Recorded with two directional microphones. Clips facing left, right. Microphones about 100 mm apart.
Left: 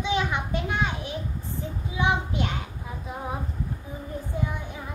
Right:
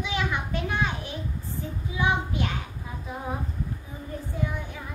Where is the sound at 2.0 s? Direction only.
25° left (ahead or behind).